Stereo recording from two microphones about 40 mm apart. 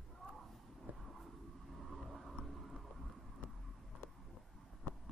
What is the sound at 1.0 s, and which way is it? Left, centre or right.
Vehicle, centre.